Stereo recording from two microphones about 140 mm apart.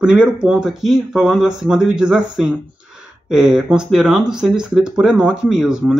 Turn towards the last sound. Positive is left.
turn(degrees=-5)  # may be behind; listen again after turning